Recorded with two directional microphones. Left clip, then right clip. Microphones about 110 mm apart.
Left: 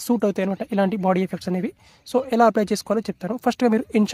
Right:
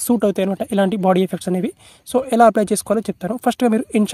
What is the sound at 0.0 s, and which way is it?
Speech, 20° right (ahead or behind).